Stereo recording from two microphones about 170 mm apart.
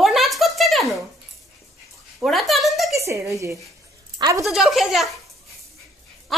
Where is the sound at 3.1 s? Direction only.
15° right (ahead or behind).